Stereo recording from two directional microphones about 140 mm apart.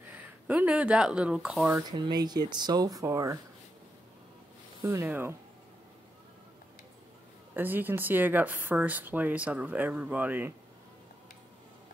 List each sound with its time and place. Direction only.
0.1 s speech: 10° right (ahead or behind)
1.8 s speech: 30° right (ahead or behind)
4.8 s speech: 15° right (ahead or behind)
7.5 s speech: 15° right (ahead or behind)